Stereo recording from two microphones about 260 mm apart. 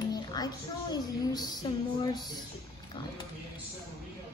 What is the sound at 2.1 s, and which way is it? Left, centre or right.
Speech, centre.